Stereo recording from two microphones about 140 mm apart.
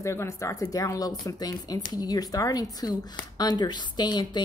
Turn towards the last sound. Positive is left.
turn(degrees=30)  # may be behind; listen again after turning